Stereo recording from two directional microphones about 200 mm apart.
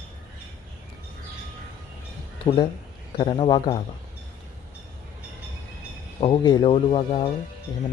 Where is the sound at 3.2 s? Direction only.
20° left (ahead or behind).